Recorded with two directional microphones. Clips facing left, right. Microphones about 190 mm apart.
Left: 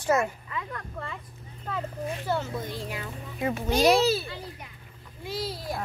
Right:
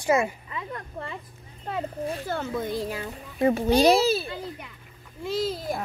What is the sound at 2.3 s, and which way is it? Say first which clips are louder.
Speech: even; 55° right (ahead or behind).